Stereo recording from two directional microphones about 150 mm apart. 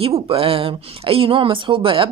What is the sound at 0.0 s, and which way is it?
Speech, 40° right (ahead or behind).